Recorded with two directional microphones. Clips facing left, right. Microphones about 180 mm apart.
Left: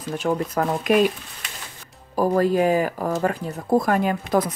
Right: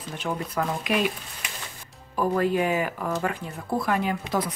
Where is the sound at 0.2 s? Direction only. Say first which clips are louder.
Left 5 dB; 45° left (ahead or behind).